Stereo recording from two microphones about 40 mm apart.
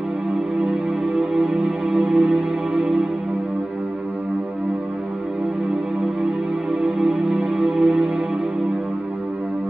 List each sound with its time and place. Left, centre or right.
0.3 s music: right
6.2 s music: right